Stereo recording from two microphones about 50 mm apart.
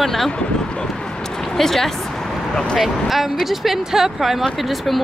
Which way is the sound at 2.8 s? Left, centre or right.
Centre.